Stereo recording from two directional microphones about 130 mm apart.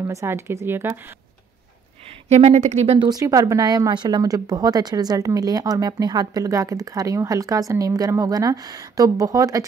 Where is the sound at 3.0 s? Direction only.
30° right (ahead or behind).